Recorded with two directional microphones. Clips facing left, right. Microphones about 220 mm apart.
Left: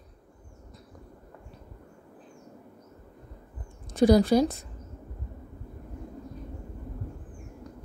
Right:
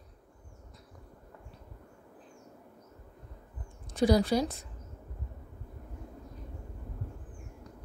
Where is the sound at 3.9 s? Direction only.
45° left (ahead or behind).